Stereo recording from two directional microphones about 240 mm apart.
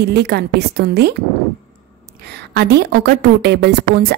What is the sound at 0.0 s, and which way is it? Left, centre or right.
A woman's voice, right.